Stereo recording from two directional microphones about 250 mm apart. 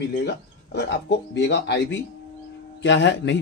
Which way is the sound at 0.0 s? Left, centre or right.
Left.